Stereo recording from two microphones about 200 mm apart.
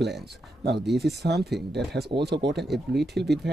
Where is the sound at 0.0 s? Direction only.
55° right (ahead or behind).